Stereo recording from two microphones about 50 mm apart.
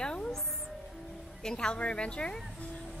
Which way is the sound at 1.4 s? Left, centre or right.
Centre.